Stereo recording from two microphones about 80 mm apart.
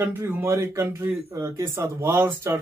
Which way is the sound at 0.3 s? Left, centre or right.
Right.